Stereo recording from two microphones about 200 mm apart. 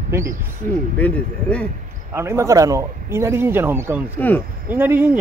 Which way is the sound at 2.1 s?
15° right (ahead or behind).